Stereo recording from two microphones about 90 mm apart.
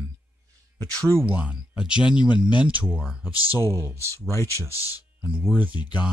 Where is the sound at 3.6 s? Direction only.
30° right (ahead or behind).